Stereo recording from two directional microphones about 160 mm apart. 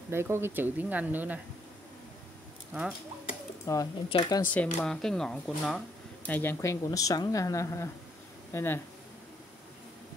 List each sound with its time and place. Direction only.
0.1 s speech: 15° right (ahead or behind)
3.6 s speech: 20° left (ahead or behind)
4.6 s speech: 5° left (ahead or behind)